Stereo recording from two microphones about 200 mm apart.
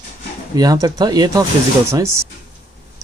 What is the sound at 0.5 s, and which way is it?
Speech, 20° right (ahead or behind).